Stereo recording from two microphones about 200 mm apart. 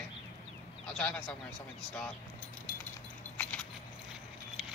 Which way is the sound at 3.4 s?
5° left (ahead or behind).